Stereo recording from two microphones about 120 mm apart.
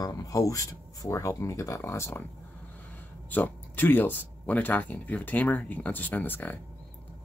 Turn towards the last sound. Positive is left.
turn(degrees=15)  # may be behind; listen again after turning